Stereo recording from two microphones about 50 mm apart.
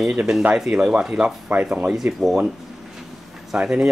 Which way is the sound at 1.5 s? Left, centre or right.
Right.